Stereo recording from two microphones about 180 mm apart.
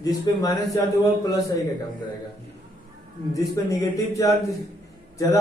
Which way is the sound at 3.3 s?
20° left (ahead or behind).